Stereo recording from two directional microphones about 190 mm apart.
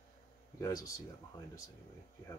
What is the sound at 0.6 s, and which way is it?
Speech, 15° left (ahead or behind).